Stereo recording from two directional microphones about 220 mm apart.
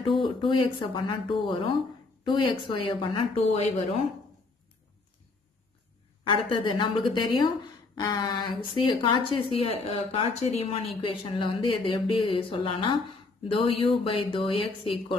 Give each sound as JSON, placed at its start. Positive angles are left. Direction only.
{"t": 0.2, "sound": "speech", "side_deg": 20}
{"t": 6.2, "sound": "speech", "side_deg": 20}